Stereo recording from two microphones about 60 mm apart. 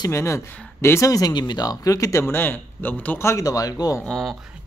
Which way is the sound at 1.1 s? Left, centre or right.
Left.